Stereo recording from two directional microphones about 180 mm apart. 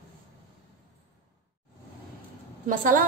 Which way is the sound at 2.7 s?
50° right (ahead or behind).